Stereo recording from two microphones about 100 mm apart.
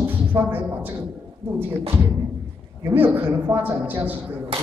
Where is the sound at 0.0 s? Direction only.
20° right (ahead or behind).